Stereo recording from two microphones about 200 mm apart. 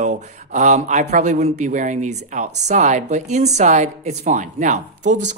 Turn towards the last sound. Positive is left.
turn(degrees=-35)  # may be behind; listen again after turning